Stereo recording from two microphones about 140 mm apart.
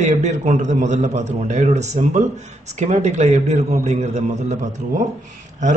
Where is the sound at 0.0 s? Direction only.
60° right (ahead or behind).